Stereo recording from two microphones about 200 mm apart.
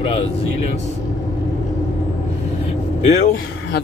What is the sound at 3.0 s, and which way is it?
Speech, 35° left (ahead or behind).